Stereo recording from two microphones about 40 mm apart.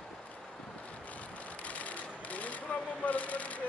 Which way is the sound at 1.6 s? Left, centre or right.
Left.